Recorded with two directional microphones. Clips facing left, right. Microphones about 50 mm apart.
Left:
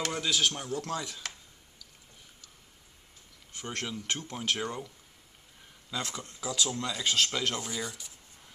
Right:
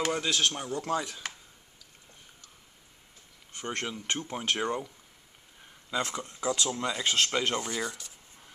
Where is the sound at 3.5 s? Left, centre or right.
Centre.